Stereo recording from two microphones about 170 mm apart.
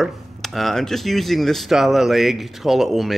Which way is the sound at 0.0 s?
Centre (ahead or behind).